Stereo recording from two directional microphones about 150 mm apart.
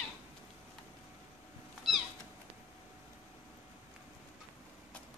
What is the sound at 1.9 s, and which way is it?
Cat, centre (ahead or behind).